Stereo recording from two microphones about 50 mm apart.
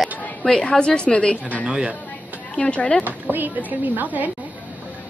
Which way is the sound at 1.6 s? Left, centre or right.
Centre.